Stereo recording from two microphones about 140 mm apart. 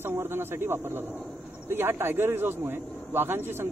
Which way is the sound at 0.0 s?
15° right (ahead or behind).